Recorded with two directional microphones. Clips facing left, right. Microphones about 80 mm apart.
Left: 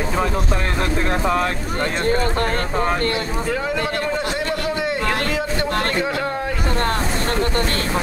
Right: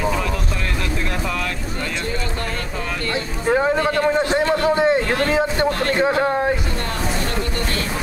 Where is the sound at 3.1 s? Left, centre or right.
Right.